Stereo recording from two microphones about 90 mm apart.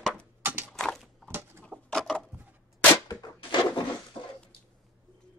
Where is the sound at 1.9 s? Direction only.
5° left (ahead or behind).